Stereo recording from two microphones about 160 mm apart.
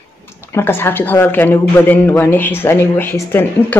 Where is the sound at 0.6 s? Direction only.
15° left (ahead or behind).